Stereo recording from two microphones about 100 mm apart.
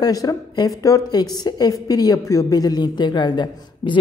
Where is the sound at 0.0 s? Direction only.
40° left (ahead or behind).